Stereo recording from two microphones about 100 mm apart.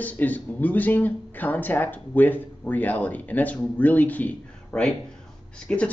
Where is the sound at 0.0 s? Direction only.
15° left (ahead or behind).